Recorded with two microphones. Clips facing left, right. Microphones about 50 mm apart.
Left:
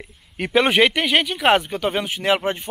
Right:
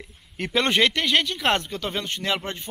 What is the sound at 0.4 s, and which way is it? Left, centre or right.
Speech, centre.